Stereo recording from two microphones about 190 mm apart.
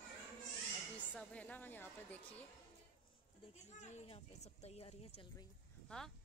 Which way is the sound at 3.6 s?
35° left (ahead or behind).